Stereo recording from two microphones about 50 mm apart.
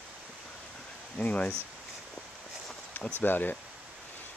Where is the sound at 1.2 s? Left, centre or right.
Left.